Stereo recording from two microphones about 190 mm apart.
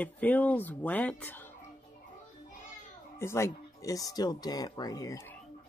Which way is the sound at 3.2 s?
15° left (ahead or behind).